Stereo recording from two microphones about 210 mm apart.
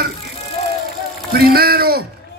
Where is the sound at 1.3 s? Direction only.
45° right (ahead or behind).